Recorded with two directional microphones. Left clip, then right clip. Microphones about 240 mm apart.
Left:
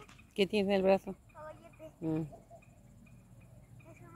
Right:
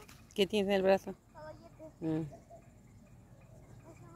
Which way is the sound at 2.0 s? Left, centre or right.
Centre.